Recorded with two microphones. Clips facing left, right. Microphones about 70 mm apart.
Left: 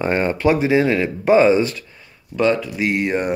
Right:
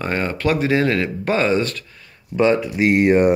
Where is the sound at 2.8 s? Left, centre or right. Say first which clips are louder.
Right 6 dB; right.